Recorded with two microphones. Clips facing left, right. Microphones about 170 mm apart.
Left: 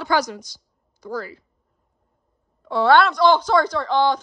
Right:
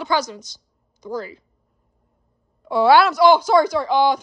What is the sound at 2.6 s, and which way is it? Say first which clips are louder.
Speech: right 2 dB; 10° right (ahead or behind).